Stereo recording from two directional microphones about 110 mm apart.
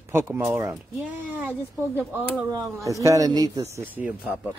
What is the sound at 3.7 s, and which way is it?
Speech, 15° right (ahead or behind).